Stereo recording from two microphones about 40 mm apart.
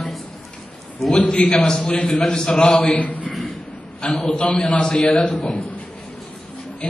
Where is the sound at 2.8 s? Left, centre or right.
Left.